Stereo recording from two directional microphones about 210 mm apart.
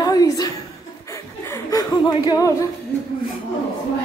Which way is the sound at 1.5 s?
15° left (ahead or behind).